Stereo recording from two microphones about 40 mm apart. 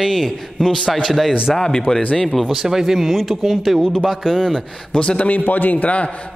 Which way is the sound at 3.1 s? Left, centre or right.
Centre.